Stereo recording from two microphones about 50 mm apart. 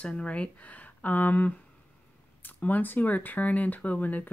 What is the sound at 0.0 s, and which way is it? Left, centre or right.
Speech, left.